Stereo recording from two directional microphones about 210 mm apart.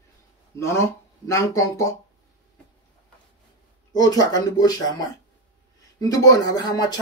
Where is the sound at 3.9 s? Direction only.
20° left (ahead or behind).